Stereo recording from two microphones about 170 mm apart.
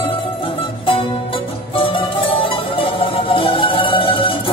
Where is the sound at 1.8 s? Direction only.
30° left (ahead or behind).